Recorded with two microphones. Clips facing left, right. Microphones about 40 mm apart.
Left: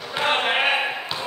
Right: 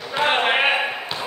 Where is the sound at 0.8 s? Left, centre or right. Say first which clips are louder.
Right 1 dB; centre.